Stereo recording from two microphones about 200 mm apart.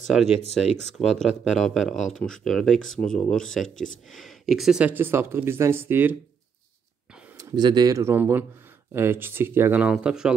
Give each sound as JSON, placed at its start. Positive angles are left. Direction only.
{"t": 0.0, "sound": "speech", "side_deg": 0}
{"t": 7.3, "sound": "speech", "side_deg": -20}